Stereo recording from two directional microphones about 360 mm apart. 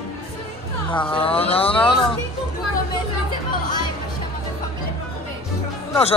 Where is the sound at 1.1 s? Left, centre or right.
Centre.